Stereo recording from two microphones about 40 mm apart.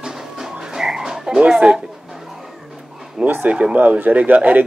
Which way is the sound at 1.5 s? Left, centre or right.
Centre.